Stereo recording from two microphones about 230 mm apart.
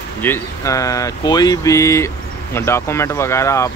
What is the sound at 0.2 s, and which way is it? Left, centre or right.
Speech, centre.